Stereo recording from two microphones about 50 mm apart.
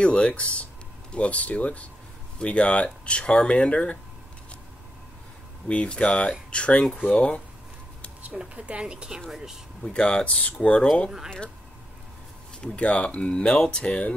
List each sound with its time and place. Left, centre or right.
0.0 s speech: left
5.7 s speech: left
8.2 s speech: right; by 9.6 s centre
9.8 s speech: centre
12.5 s speech: left